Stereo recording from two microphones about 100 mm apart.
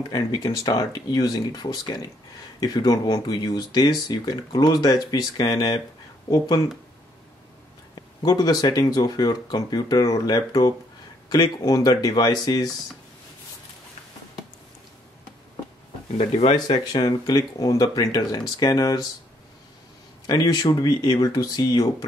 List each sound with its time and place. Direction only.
0.1 s speech: 40° left (ahead or behind)
7.9 s speech: 45° left (ahead or behind)
16.2 s speech: 90° left
16.5 s speech: 45° left (ahead or behind)
20.2 s speech: 40° left (ahead or behind)